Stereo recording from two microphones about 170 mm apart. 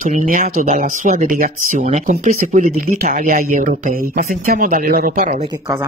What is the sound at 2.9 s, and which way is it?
Speech, 60° right (ahead or behind).